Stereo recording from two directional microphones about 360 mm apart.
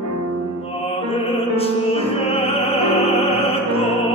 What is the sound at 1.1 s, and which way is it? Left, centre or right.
Music, centre.